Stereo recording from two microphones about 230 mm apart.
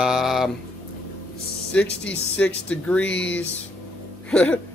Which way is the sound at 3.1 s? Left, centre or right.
Left.